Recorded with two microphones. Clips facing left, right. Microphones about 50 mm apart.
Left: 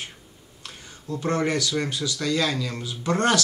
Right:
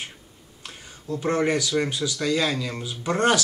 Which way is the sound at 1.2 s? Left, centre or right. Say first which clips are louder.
Right 1 dB; centre.